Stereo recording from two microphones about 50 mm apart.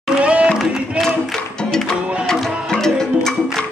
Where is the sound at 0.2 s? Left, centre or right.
Right.